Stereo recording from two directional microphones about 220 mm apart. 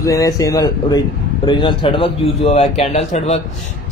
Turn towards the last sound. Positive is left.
turn(degrees=30)  # may be behind; listen again after turning